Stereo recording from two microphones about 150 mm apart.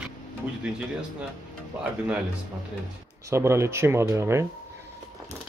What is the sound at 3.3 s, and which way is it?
Speech, 20° right (ahead or behind).